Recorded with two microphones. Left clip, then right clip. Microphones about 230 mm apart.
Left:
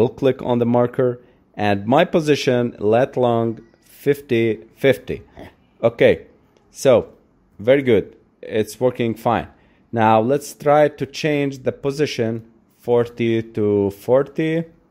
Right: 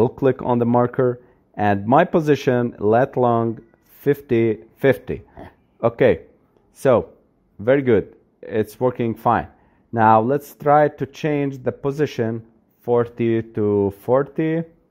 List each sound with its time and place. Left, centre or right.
0.0 s speech: centre